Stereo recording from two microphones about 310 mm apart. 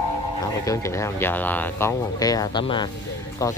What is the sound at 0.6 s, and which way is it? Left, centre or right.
Speech, centre.